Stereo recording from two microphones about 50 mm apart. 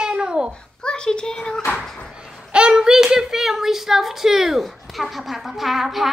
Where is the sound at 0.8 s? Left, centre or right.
Centre.